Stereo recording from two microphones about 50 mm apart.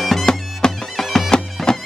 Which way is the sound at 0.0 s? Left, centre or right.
Centre.